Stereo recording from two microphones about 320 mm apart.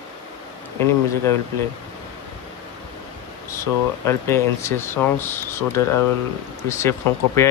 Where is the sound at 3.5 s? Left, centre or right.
Centre.